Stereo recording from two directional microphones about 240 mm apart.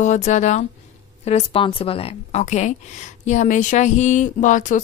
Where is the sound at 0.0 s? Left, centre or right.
Left.